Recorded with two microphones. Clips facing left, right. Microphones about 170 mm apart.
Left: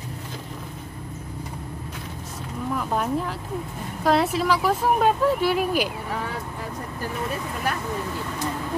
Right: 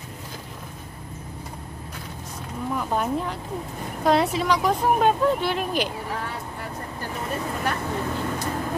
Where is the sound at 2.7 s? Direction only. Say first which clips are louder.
Even; centre (ahead or behind).